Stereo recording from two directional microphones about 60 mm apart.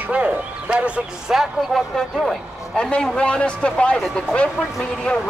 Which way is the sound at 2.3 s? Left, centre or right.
Centre.